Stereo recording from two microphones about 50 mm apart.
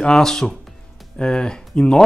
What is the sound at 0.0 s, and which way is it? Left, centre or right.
Speech, centre.